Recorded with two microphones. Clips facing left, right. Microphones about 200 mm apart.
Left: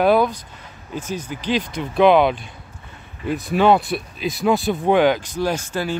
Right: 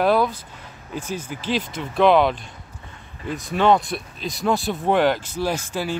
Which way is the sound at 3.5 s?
5° left (ahead or behind).